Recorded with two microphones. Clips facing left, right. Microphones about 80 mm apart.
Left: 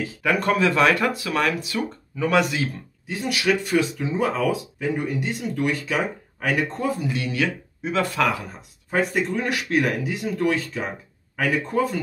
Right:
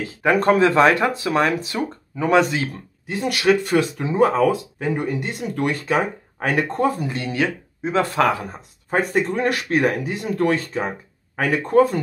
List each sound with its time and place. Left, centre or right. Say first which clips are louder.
0.2 s speech: right 5 dB; right
3.1 s speech: right 3 dB; right
3.6 s speech: right 2 dB; right
4.5 s speech: right 3 dB; right